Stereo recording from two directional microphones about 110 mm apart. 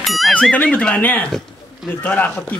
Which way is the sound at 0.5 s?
10° left (ahead or behind).